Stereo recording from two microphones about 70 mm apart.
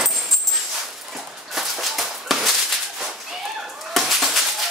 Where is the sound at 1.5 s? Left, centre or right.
Centre.